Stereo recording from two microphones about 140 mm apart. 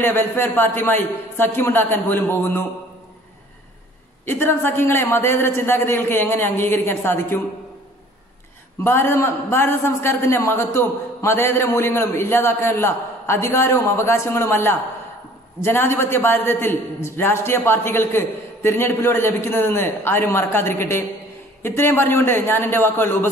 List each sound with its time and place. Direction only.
0.0 s a man's voice: 15° left (ahead or behind)
4.3 s a man's voice: 15° left (ahead or behind)
8.8 s a man's voice: 15° left (ahead or behind)